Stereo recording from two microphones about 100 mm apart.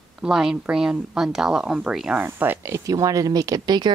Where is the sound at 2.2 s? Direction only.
20° right (ahead or behind); by 3.9 s 40° right (ahead or behind).